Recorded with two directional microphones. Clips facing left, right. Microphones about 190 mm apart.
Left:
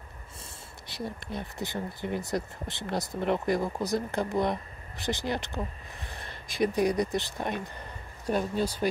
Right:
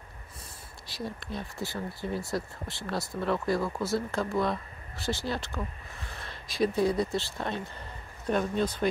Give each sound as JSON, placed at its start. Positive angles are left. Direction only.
{"t": 0.8, "sound": "speech", "side_deg": 20}